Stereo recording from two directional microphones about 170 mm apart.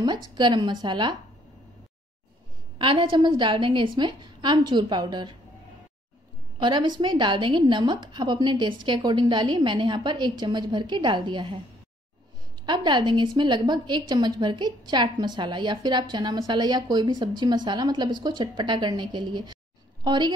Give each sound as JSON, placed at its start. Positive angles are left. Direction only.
{"t": 0.0, "sound": "a woman's voice", "side_deg": -25}
{"t": 2.8, "sound": "a woman's voice", "side_deg": -30}
{"t": 6.6, "sound": "a woman's voice", "side_deg": -25}
{"t": 12.6, "sound": "a woman's voice", "side_deg": -25}